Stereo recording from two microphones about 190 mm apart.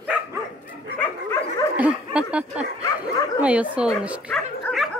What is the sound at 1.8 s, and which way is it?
Speech, 5° right (ahead or behind).